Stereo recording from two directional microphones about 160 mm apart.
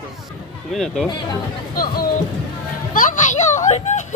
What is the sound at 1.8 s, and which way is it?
Speech, 65° left (ahead or behind).